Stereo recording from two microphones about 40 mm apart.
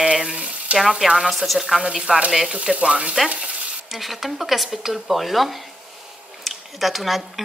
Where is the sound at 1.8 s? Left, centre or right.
Centre.